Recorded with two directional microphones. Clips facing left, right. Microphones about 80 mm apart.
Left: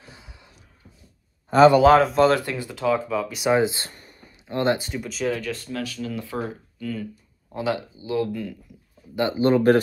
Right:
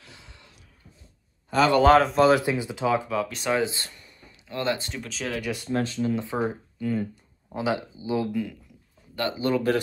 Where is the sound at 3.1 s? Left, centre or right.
Centre.